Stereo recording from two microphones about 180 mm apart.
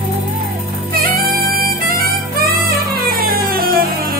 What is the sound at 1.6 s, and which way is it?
Music, 55° right (ahead or behind).